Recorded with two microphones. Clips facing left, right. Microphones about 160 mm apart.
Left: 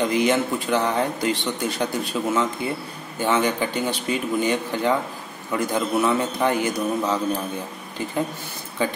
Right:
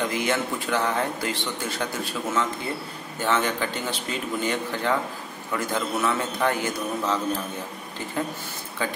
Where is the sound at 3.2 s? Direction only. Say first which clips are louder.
Left 3 dB; 15° left (ahead or behind).